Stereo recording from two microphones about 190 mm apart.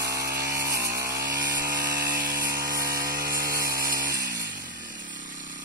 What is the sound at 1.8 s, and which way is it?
Tools, 50° right (ahead or behind).